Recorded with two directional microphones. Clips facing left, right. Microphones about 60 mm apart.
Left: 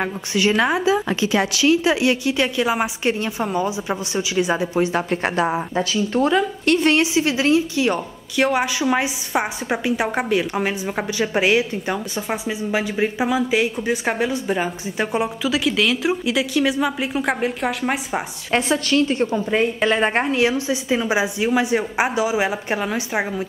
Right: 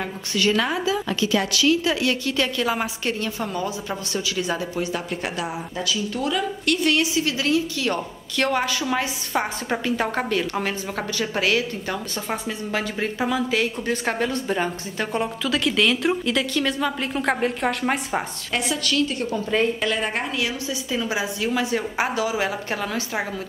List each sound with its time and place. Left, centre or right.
0.3 s a woman's voice: left
4.7 s a woman's voice: left; by 18.2 s centre
18.5 s a woman's voice: left; by 23.4 s centre